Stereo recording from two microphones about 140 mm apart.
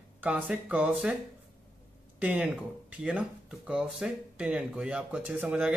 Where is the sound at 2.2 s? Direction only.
10° right (ahead or behind).